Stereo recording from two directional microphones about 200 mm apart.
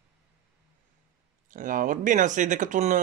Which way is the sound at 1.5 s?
40° right (ahead or behind).